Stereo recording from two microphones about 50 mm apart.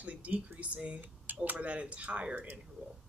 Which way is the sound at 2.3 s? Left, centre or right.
Right.